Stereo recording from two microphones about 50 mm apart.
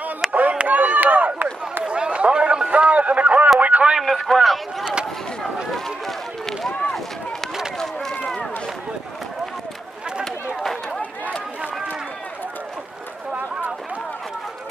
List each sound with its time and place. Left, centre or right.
0.3 s a sound: right
1.9 s a sound: right
3.5 s radio: right
4.0 s a man's voice: centre
5.7 s run: centre
10.6 s run: centre